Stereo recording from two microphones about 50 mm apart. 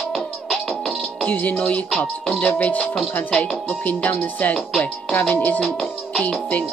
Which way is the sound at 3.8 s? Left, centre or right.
Left.